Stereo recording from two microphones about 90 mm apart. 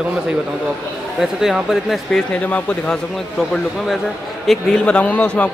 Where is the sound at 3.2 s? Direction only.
5° left (ahead or behind).